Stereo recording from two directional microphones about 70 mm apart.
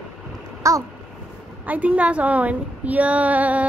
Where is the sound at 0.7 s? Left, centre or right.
Right.